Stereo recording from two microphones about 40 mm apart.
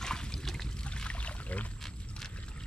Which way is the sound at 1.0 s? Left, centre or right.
Left.